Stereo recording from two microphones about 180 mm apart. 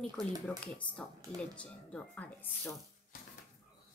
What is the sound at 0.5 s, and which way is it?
Speech, 5° left (ahead or behind).